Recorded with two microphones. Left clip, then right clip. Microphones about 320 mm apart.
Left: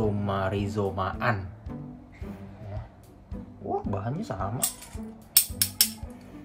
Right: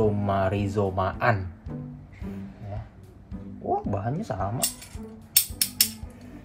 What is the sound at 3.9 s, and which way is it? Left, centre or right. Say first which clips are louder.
Speech: right 3 dB; centre.